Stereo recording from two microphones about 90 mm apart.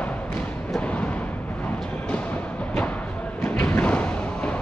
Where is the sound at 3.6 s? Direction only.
20° left (ahead or behind).